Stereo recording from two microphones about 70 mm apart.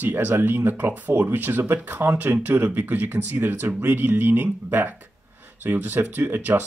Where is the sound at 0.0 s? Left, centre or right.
Right.